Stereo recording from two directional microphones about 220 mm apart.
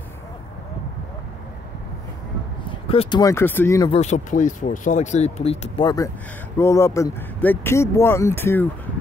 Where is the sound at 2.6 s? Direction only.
25° left (ahead or behind).